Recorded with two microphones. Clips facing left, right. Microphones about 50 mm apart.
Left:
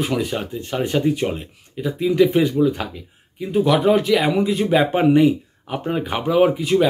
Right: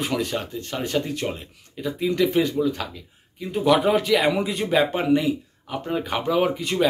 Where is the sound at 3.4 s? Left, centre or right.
Centre.